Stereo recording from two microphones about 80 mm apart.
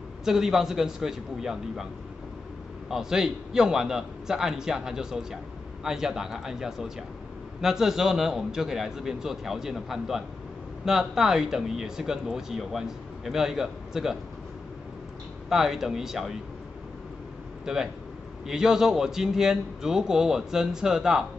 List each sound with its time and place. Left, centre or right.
0.2 s speech: centre
2.9 s a man's voice: centre
15.5 s speech: centre
17.7 s a man's voice: centre